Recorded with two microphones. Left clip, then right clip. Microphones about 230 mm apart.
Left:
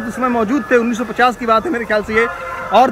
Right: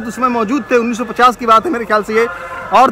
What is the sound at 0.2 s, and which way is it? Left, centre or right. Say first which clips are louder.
Speech: right 2 dB; centre.